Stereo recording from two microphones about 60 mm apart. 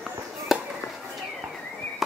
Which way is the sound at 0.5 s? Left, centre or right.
Centre.